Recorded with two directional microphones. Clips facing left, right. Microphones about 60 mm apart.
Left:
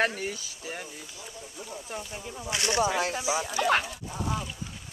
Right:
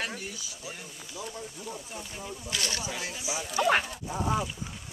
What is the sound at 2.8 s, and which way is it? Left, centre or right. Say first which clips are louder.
Speech: left 10 dB; left.